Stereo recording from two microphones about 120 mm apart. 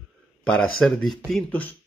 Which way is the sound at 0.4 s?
5° left (ahead or behind).